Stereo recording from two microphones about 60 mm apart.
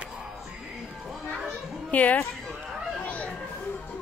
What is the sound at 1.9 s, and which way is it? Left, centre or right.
Speech, left.